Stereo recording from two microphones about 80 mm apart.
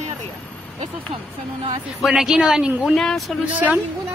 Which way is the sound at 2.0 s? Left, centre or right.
Centre.